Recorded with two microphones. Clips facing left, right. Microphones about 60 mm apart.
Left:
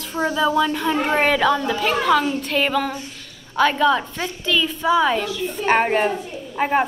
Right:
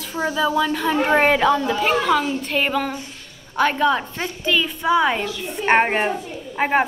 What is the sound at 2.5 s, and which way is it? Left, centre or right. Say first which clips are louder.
A woman's voice: left 1 dB; centre.